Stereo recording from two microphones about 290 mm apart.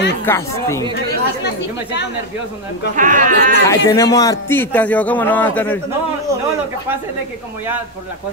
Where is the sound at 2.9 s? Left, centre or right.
Right.